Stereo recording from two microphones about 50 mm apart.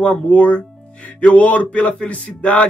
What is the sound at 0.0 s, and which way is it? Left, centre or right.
Speech, left.